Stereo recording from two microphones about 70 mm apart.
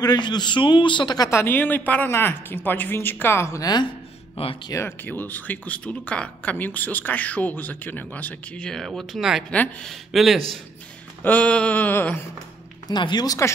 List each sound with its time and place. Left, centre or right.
0.0 s a man's voice: left
1.3 s speech: left
4.7 s speech: left
8.7 s speech: centre
9.5 s speech: centre
9.8 s speech: centre
11.2 s speech: centre
12.8 s speech: left